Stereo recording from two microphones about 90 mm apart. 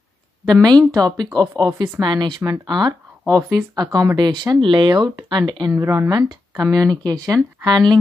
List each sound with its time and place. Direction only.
0.5 s speech: 50° right (ahead or behind)
5.7 s speech: 25° right (ahead or behind)
6.0 s speech: 50° right (ahead or behind)